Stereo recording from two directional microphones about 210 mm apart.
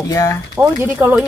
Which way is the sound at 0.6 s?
10° right (ahead or behind).